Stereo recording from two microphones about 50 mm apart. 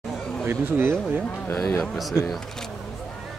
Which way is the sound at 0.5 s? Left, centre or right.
Right.